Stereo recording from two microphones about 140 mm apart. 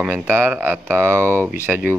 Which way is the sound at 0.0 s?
15° right (ahead or behind).